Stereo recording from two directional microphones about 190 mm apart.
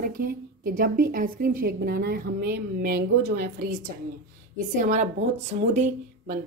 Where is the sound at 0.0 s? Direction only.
45° right (ahead or behind).